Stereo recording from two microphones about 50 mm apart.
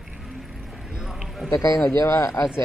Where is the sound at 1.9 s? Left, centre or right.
Left.